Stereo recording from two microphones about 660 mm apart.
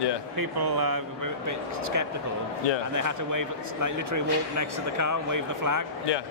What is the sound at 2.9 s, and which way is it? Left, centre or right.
Speech, right.